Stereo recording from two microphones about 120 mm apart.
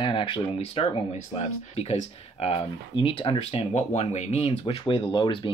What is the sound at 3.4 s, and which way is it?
Speech, 60° left (ahead or behind).